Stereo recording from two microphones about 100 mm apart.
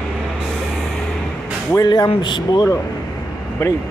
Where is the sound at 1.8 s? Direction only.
45° left (ahead or behind).